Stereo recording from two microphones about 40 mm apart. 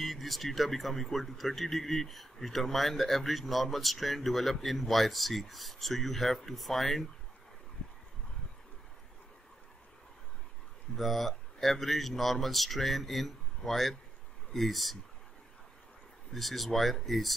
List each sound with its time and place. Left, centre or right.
0.0 s speech: centre
7.8 s a sound: left
11.0 s speech: centre
16.3 s speech: centre